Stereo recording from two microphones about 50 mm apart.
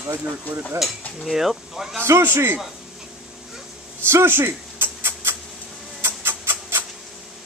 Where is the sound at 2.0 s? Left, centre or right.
Right.